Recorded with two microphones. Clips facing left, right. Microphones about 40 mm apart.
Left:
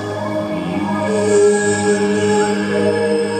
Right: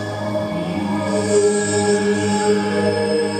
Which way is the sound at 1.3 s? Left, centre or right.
Left.